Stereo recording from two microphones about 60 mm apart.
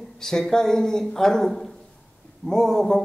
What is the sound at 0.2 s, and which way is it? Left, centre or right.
A man's voice, centre.